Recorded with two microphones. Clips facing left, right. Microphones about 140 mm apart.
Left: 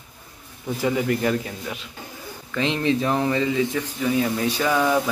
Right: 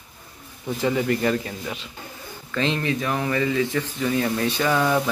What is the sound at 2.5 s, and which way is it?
A man's voice, 15° left (ahead or behind).